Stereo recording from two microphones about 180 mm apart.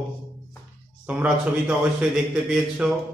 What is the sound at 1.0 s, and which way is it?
A man's voice, 5° right (ahead or behind).